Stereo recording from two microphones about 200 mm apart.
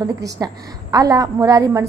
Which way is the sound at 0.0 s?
15° right (ahead or behind).